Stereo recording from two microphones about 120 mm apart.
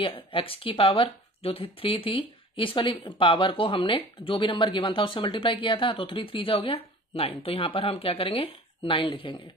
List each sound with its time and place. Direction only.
0.0 s speech: 50° left (ahead or behind)